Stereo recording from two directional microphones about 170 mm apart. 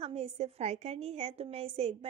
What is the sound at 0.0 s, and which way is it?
A woman's voice, 40° right (ahead or behind).